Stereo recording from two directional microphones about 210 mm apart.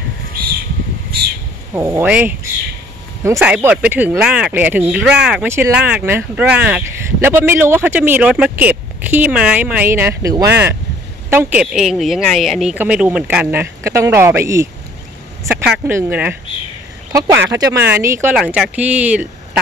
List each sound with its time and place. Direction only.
1.7 s speech: 10° right (ahead or behind)
3.3 s a woman's voice: 5° right (ahead or behind)